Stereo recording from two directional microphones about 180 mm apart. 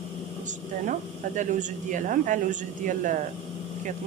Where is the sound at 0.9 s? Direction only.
45° right (ahead or behind).